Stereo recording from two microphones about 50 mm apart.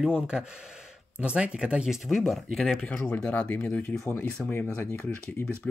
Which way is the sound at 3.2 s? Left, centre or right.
Left.